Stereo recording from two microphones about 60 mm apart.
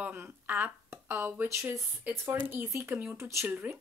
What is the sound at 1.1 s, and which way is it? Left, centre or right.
Speech, right.